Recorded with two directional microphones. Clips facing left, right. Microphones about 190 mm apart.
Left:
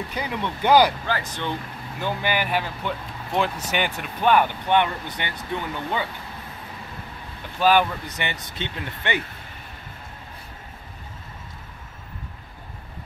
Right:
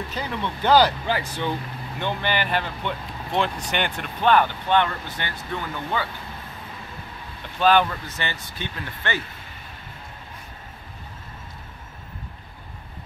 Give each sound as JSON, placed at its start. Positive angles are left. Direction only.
{"t": 0.1, "sound": "speech", "side_deg": 15}
{"t": 1.0, "sound": "speech", "side_deg": -10}
{"t": 2.0, "sound": "speech", "side_deg": 5}
{"t": 7.5, "sound": "speech", "side_deg": 10}